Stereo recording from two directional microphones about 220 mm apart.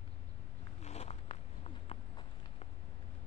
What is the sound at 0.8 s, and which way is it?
Zipper, 30° left (ahead or behind).